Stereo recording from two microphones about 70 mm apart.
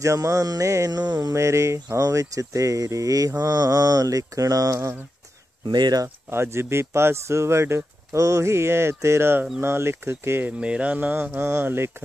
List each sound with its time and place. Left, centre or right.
0.0 s music: right
1.0 s mantra: right
1.3 s speech: right
5.7 s speech: right
6.3 s speech: right
10.6 s a sound: centre
11.4 s speech: right